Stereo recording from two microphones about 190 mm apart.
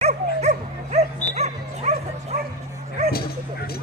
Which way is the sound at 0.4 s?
35° right (ahead or behind).